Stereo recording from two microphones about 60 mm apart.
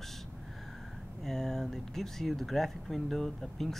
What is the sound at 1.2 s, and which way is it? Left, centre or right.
Speech, centre.